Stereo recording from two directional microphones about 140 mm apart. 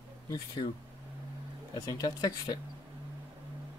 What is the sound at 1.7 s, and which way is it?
Speech, 25° left (ahead or behind).